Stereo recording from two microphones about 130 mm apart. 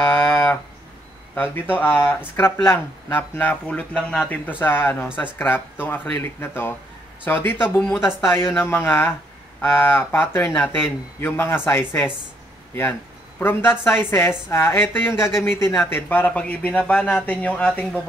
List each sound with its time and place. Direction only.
0.1 s a sound: 15° left (ahead or behind)
1.3 s speech: 15° left (ahead or behind)
13.4 s speech: 15° left (ahead or behind)